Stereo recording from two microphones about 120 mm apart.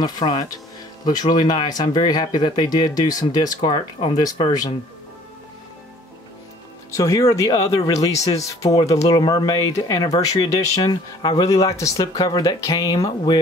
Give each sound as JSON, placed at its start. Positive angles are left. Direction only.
{"t": 0.0, "sound": "speech", "side_deg": 35}
{"t": 7.0, "sound": "speech", "side_deg": 30}